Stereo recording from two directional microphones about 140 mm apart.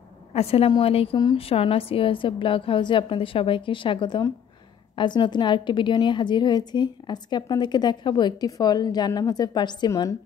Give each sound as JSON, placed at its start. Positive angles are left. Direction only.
{"t": 0.3, "sound": "a woman's voice", "side_deg": 45}